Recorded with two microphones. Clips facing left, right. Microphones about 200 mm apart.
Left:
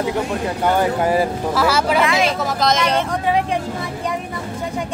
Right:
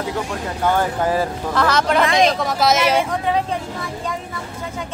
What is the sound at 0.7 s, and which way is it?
Speech, 10° left (ahead or behind).